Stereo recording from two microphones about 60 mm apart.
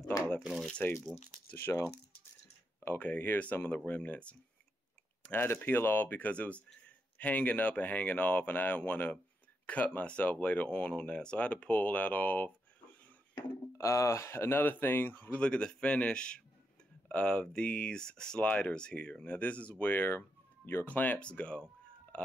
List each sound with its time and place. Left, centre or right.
0.8 s speech: left
3.0 s speech: left
5.3 s speech: left
13.7 s speech: left
15.3 s speech: centre